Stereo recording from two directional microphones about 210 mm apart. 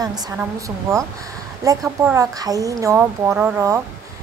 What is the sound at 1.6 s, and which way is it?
A woman's voice, 15° right (ahead or behind).